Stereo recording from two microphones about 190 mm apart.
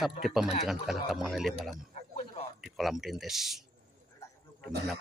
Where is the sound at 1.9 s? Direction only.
35° left (ahead or behind).